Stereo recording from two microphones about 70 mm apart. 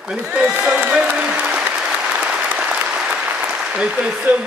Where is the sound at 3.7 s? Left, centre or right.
Centre.